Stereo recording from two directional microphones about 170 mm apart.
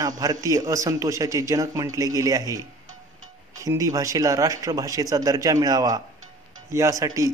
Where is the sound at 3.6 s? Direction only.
20° right (ahead or behind).